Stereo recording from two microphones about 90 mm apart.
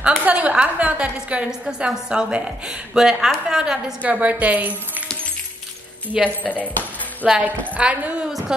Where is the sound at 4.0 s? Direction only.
15° right (ahead or behind).